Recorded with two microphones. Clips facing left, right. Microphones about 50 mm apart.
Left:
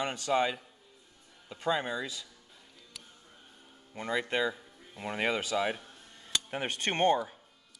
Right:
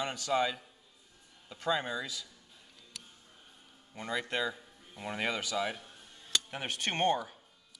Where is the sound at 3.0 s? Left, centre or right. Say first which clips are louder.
Even; centre.